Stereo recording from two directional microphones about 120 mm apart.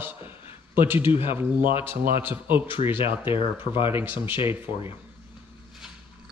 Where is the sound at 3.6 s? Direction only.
45° left (ahead or behind).